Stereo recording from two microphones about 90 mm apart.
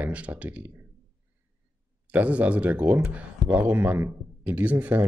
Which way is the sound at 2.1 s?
15° right (ahead or behind).